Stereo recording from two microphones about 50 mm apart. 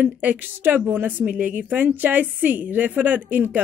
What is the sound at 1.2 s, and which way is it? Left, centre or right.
A woman's voice, right.